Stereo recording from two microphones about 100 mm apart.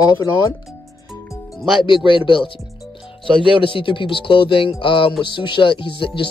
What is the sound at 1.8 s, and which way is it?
Speech, 60° left (ahead or behind).